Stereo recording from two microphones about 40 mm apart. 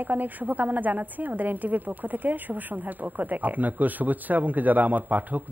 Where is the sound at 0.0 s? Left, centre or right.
Right.